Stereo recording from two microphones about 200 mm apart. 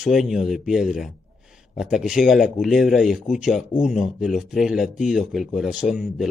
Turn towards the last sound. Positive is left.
turn(degrees=0)  # may be behind; listen again after turning